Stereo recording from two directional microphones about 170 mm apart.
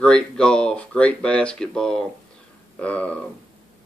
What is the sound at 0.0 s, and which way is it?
Speech, 5° left (ahead or behind).